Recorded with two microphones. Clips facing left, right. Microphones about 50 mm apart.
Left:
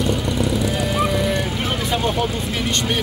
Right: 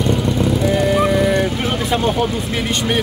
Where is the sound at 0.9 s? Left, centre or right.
Centre.